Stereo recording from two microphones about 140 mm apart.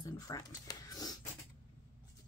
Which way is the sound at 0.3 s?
25° left (ahead or behind).